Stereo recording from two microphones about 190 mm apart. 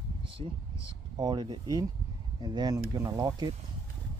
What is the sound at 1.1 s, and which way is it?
Speech, 20° right (ahead or behind).